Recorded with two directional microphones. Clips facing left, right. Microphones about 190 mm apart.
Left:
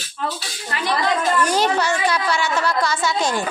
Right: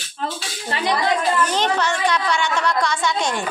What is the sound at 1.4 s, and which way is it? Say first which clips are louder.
A woman's voice: left 1 dB; 10° left (ahead or behind).